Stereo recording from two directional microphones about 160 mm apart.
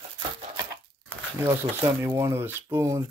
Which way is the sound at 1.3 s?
15° right (ahead or behind).